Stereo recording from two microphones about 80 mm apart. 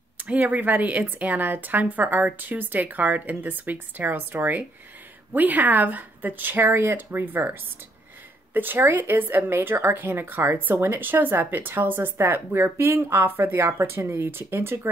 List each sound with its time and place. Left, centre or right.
0.2 s speech: right